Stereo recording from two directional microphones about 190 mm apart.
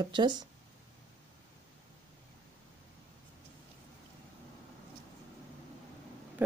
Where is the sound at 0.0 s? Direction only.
25° right (ahead or behind).